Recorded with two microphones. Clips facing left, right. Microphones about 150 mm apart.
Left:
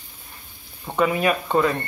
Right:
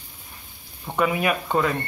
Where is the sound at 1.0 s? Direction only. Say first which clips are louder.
Left 2 dB; 10° right (ahead or behind).